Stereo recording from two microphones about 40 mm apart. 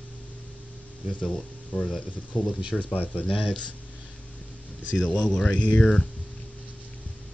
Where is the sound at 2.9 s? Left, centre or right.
Left.